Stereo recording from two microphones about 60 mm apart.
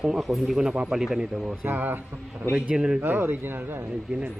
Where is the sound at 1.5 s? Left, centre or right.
Right.